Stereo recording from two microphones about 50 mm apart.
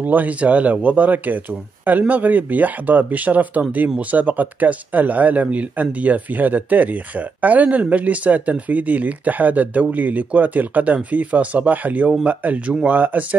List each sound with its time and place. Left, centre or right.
0.0 s speech: right